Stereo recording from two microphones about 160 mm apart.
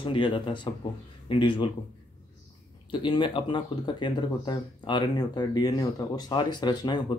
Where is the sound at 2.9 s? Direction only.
30° left (ahead or behind).